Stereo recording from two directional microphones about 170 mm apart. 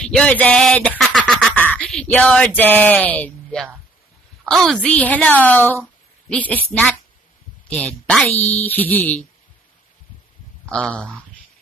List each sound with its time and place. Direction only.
0.0 s a woman's voice: 5° left (ahead or behind)
8.1 s a woman's voice: 5° left (ahead or behind)
10.7 s a woman's voice: 5° left (ahead or behind)